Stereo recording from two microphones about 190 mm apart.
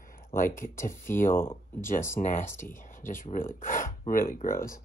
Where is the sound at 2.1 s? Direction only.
45° left (ahead or behind).